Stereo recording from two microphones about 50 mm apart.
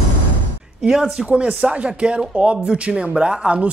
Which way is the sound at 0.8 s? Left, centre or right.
Centre.